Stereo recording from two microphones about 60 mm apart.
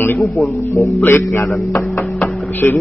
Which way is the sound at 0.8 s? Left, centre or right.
Left.